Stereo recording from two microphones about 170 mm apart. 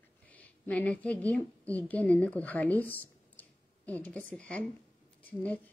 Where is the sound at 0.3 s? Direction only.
10° left (ahead or behind).